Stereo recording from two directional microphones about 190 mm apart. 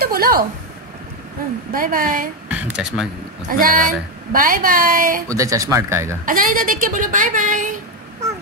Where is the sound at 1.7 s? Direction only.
45° right (ahead or behind).